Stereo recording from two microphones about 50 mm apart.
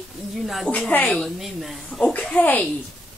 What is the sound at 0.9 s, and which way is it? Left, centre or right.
Speech, left.